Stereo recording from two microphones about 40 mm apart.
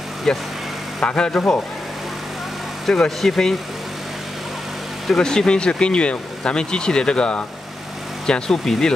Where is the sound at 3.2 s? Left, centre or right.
Centre.